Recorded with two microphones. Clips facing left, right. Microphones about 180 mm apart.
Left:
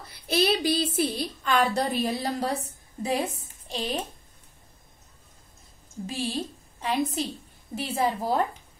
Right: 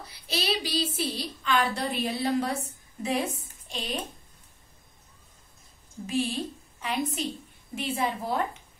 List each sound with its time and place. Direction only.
0.0 s a woman's voice: 50° left (ahead or behind)
6.0 s a woman's voice: 30° left (ahead or behind)